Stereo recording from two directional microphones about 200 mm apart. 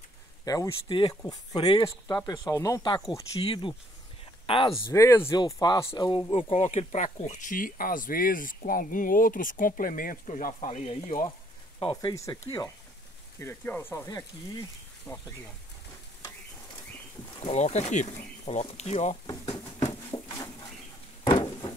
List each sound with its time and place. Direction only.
0.5 s speech: 20° left (ahead or behind)
4.9 s speech: 15° left (ahead or behind)
17.4 s speech: 30° left (ahead or behind)
19.2 s speech: 20° left (ahead or behind)
20.2 s a sound: 15° left (ahead or behind)